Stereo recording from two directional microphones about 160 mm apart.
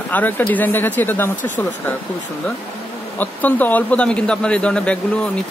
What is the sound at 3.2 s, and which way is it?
Speech, 10° left (ahead or behind).